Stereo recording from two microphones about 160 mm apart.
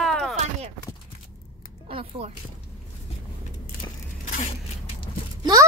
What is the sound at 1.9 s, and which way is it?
Music, 35° right (ahead or behind).